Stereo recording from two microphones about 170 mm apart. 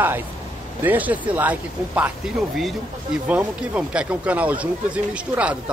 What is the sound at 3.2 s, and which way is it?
Speech, 5° right (ahead or behind).